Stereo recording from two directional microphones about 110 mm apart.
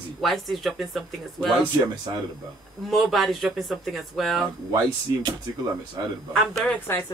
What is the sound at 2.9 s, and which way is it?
Speech, centre (ahead or behind).